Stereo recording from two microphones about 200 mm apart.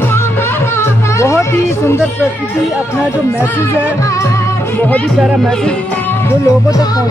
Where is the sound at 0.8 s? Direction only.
15° left (ahead or behind).